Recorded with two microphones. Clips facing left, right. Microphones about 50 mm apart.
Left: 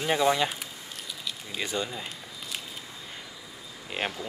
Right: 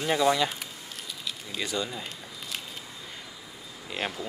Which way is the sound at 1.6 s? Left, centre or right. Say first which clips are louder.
Even; left.